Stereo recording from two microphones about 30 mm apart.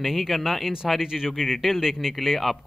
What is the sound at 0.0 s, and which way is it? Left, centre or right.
Speech, centre.